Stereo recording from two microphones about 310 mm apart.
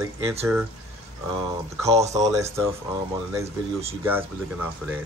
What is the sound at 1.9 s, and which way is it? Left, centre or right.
Speech, right.